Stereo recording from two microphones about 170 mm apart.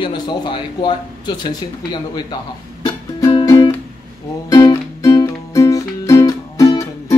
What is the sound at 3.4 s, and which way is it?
Music, 25° left (ahead or behind).